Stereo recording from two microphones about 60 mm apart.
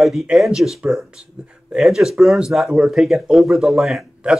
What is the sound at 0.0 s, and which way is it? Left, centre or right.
Speech, centre.